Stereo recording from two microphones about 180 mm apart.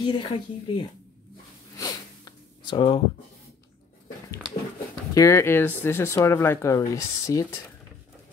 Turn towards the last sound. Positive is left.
turn(degrees=20)  # may be behind; listen again after turning